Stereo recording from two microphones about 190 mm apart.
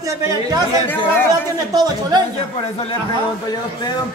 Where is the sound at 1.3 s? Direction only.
20° right (ahead or behind).